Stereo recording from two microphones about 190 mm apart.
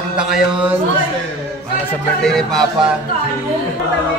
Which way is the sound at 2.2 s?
5° left (ahead or behind).